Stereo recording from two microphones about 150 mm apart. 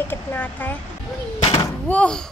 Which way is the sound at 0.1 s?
10° left (ahead or behind).